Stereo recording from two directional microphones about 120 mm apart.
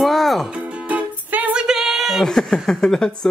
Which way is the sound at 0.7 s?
10° right (ahead or behind).